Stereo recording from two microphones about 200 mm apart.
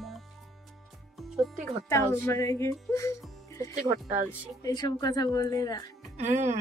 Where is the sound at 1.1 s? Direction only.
Centre (ahead or behind).